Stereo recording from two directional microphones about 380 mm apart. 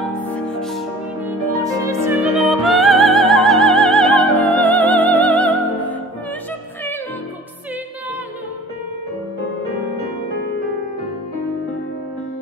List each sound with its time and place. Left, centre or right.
0.2 s music: centre
1.6 s opera: centre